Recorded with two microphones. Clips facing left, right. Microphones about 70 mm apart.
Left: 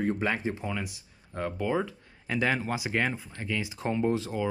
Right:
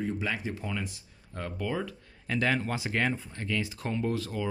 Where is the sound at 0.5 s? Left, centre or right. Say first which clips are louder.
Left 1 dB; centre.